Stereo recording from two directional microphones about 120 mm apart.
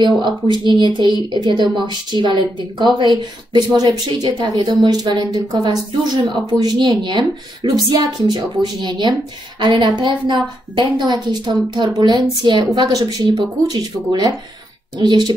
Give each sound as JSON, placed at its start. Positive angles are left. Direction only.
{"t": 0.0, "sound": "speech", "side_deg": -40}